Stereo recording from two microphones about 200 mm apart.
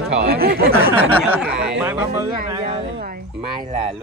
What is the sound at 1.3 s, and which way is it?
Speech, 5° right (ahead or behind).